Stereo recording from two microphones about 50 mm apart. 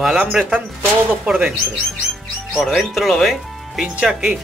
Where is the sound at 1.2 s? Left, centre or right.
Centre.